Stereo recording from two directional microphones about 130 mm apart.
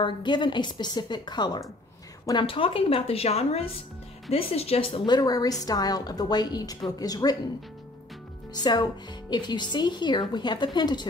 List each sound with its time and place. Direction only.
0.0 s a woman's voice: 35° left (ahead or behind)
9.3 s a woman's voice: 35° left (ahead or behind)